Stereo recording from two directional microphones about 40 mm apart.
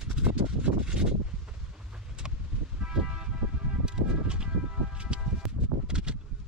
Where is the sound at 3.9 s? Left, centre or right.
Centre.